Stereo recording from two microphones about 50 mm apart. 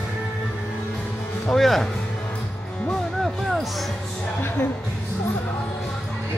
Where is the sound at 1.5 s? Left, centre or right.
Centre.